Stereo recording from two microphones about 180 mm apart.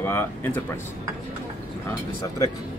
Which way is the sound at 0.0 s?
10° left (ahead or behind).